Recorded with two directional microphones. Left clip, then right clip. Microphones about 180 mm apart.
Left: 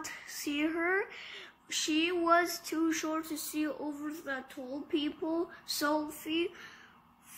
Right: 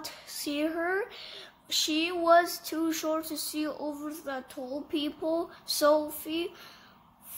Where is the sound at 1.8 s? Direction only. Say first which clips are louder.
Right 3 dB; 45° right (ahead or behind).